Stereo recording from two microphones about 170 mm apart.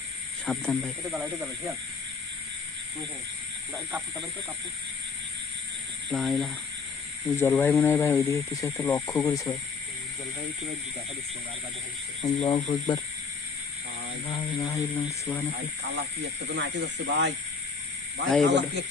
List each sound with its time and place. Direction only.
0.5 s speech: 5° left (ahead or behind)
1.1 s speech: 10° right (ahead or behind)
6.0 s speech: centre (ahead or behind)
7.3 s speech: 15° left (ahead or behind)
12.2 s speech: 35° left (ahead or behind)
14.2 s speech: 20° left (ahead or behind)
15.5 s speech: 85° right
18.5 s speech: 90° right